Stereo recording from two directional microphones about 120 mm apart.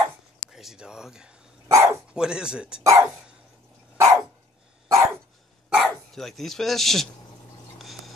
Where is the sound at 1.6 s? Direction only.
25° right (ahead or behind).